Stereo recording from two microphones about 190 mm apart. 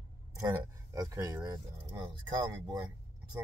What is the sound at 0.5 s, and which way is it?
Speech, 15° right (ahead or behind).